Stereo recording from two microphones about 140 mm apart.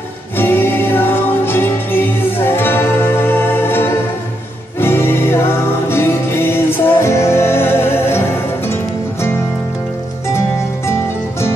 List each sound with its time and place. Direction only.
0.4 s music: 15° left (ahead or behind)